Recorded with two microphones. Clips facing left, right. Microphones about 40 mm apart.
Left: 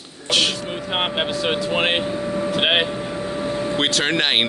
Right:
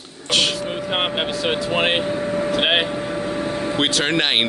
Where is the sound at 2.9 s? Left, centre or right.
Right.